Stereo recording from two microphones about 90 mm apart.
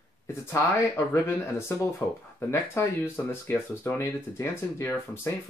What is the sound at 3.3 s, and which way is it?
Speech, 25° left (ahead or behind).